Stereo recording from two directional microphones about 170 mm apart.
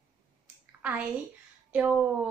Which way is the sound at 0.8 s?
10° right (ahead or behind).